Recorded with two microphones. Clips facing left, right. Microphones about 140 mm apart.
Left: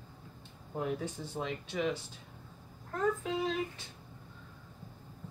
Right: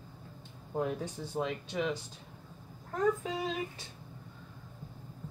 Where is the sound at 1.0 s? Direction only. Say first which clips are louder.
Right 1 dB; 15° right (ahead or behind).